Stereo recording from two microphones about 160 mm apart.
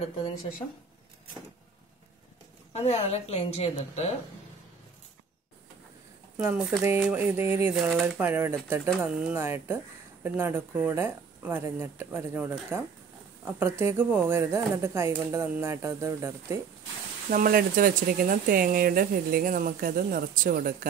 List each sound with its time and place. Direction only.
2.7 s a woman's voice: 40° left (ahead or behind)
6.3 s speech: 5° right (ahead or behind)
7.9 s speech: centre (ahead or behind)
8.3 s speech: 15° right (ahead or behind)
17.3 s speech: 65° right (ahead or behind)